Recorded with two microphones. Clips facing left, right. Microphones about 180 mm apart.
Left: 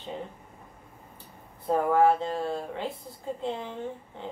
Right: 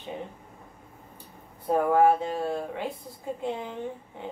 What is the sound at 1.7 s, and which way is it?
Speech, 15° right (ahead or behind).